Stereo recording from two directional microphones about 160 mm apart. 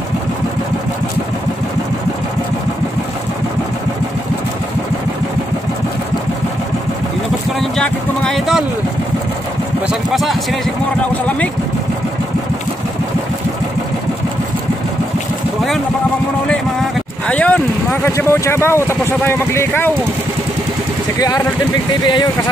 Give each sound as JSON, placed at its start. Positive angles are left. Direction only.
{"t": 7.7, "sound": "music", "side_deg": 5}
{"t": 9.8, "sound": "music", "side_deg": 0}
{"t": 11.2, "sound": "speech", "side_deg": 10}
{"t": 17.3, "sound": "a sound", "side_deg": 10}
{"t": 18.0, "sound": "speech", "side_deg": 15}
{"t": 22.0, "sound": "speech", "side_deg": 25}